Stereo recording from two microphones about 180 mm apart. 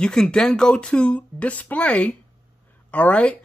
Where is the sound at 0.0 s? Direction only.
5° left (ahead or behind).